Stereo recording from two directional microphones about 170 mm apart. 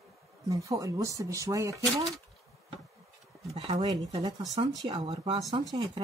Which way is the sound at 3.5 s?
35° right (ahead or behind).